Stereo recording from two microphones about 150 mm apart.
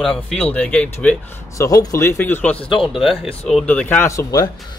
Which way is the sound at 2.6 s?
35° left (ahead or behind).